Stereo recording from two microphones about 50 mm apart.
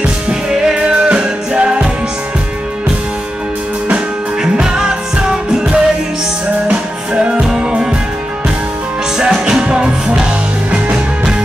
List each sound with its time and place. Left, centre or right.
0.0 s music: centre
4.4 s music: centre
7.2 s music: centre
9.5 s music: centre